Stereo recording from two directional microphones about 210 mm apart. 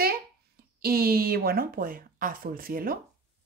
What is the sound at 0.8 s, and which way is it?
Speech, 45° right (ahead or behind).